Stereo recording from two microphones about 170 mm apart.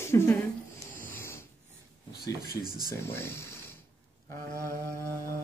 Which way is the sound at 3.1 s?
15° left (ahead or behind).